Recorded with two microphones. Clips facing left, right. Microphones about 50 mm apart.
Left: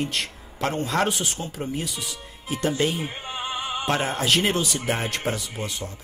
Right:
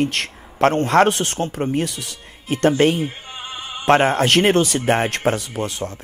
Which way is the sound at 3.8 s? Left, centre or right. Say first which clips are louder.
Right 9 dB; right.